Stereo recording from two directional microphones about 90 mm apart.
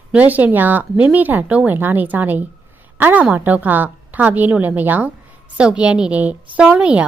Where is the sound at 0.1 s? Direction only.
20° right (ahead or behind).